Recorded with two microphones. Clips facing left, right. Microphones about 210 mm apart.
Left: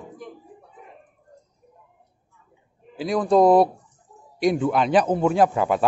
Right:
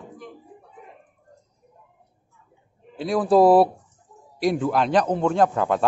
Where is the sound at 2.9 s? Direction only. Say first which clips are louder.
Right 1 dB; centre (ahead or behind).